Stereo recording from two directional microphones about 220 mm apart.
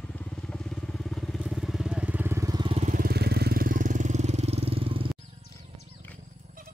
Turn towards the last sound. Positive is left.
turn(degrees=-25)  # may be behind; listen again after turning